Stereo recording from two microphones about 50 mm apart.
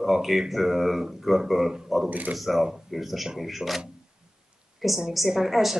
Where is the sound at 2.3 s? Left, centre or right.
Centre.